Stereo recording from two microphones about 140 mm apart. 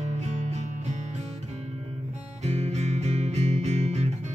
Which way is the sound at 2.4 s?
55° right (ahead or behind).